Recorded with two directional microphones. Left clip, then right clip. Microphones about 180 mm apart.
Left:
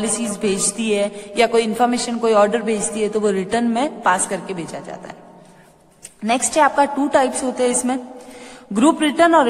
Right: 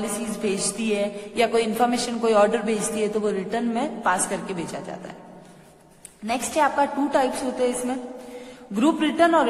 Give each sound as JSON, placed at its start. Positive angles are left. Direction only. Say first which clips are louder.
{"t": 0.4, "sound": "a man's voice", "louder": "left 4 dB", "side_deg": 25}
{"t": 3.3, "sound": "a man's voice", "louder": "left 6 dB", "side_deg": 30}
{"t": 6.2, "sound": "a man's voice", "louder": "left 6 dB", "side_deg": 25}